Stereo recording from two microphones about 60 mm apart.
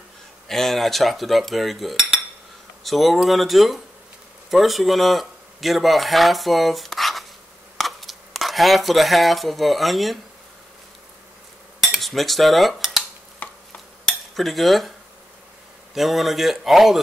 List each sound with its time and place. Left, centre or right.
0.5 s cutlery: centre
4.5 s speech: centre
11.9 s cutlery: centre
13.4 s a sound: left
14.3 s cutlery: centre
15.9 s cutlery: centre